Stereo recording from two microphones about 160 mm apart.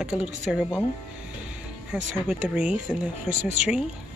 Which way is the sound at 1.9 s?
10° right (ahead or behind).